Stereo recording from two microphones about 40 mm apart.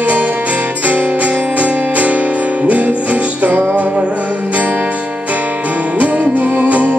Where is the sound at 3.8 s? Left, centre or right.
Right.